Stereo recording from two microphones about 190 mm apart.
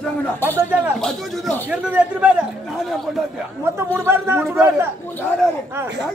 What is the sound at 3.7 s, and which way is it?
Speech, 15° right (ahead or behind).